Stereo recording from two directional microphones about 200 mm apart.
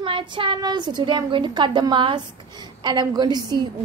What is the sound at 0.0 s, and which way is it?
A woman's voice, 25° right (ahead or behind).